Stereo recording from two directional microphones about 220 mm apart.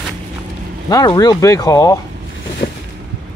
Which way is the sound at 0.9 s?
15° left (ahead or behind).